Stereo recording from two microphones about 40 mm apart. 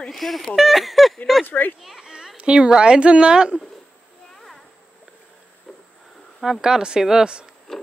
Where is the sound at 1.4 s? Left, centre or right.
Left.